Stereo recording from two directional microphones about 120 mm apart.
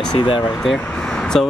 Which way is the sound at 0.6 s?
5° left (ahead or behind).